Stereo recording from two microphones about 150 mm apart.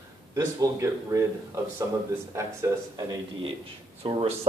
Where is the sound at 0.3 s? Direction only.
20° right (ahead or behind).